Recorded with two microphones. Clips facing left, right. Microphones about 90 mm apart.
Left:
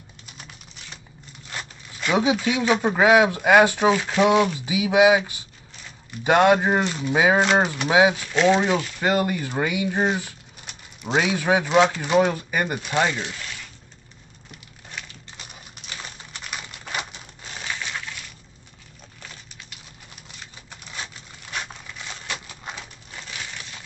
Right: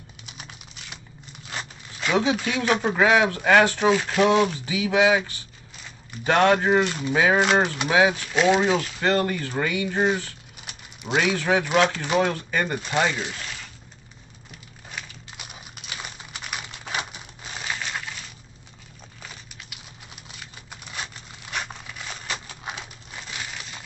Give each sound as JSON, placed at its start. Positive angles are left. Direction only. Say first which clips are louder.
{"t": 0.3, "sound": "typing", "louder": "right 1 dB", "side_deg": -10}
{"t": 1.5, "sound": "zipper", "louder": "right 1 dB", "side_deg": -15}
{"t": 2.0, "sound": "speech", "louder": "left 2 dB", "side_deg": 10}
{"t": 3.9, "sound": "speech", "louder": "left 1 dB", "side_deg": 0}
{"t": 7.2, "sound": "speech", "louder": "left 1 dB", "side_deg": 15}
{"t": 8.3, "sound": "speech", "louder": "left 1 dB", "side_deg": -5}
{"t": 10.6, "sound": "a sound", "louder": "left 2 dB", "side_deg": -5}
{"t": 11.1, "sound": "speech", "louder": "left 1 dB", "side_deg": 10}
{"t": 14.9, "sound": "typing", "louder": "even", "side_deg": -5}
{"t": 19.7, "sound": "typing", "louder": "right 1 dB", "side_deg": -5}
{"t": 20.7, "sound": "a sound", "louder": "right 1 dB", "side_deg": -5}